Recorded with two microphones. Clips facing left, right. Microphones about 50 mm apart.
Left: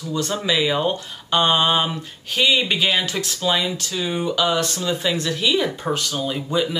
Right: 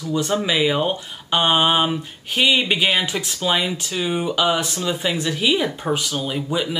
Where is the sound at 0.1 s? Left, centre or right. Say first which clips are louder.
Right 2 dB; centre.